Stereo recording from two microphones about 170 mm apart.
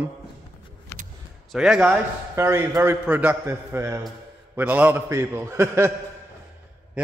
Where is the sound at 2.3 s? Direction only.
15° right (ahead or behind).